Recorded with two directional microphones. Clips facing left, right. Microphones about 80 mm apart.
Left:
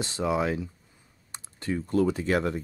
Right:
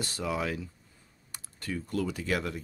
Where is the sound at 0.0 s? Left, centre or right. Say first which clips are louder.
Left 5 dB; left.